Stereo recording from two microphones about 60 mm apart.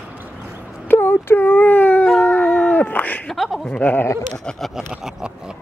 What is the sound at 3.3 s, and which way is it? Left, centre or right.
Chuckle, centre.